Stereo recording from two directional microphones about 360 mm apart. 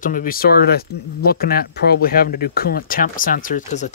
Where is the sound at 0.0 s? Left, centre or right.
Left.